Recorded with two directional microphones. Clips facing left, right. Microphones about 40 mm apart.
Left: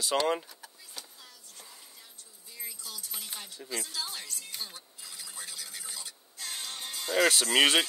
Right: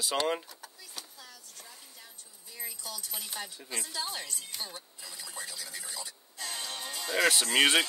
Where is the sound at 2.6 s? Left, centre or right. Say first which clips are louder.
Right 2 dB; right.